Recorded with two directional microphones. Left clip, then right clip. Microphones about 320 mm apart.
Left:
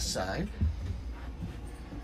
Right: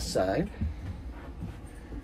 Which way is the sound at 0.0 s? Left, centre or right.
Centre.